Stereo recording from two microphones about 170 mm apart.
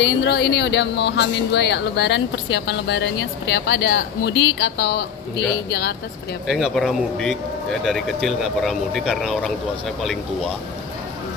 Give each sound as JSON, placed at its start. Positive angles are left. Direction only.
{"t": 0.0, "sound": "speech", "side_deg": 85}
{"t": 6.4, "sound": "speech", "side_deg": 0}